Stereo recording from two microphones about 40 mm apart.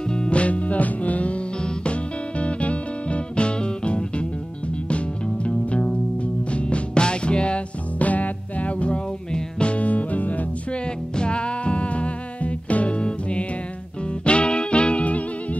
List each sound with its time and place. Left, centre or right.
0.1 s music: left
10.7 s music: left